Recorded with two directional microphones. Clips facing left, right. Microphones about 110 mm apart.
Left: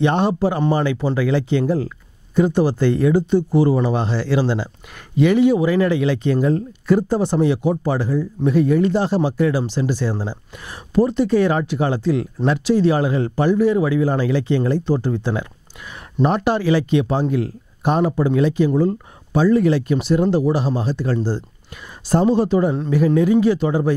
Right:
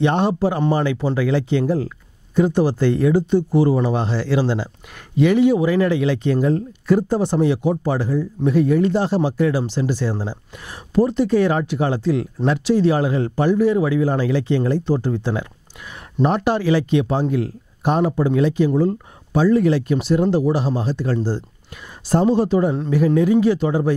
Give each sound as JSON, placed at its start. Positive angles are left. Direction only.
{"t": 0.0, "sound": "speech", "side_deg": 15}